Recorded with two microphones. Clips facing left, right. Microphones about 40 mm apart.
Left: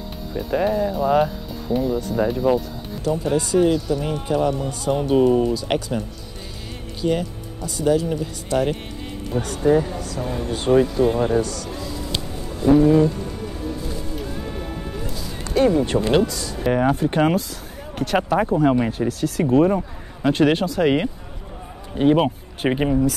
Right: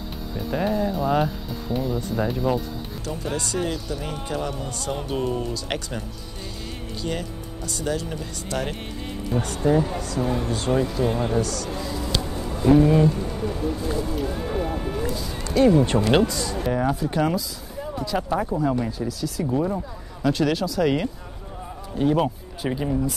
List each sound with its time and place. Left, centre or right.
0.3 s speech: centre
9.3 s speech: centre
10.5 s speech: centre
12.8 s speech: centre
14.1 s a sound: centre
15.6 s speech: centre
16.7 s speech: left
17.9 s speech: left
20.2 s speech: left